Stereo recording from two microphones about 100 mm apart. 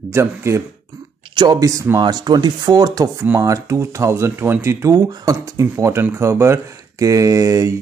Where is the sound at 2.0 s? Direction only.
45° right (ahead or behind).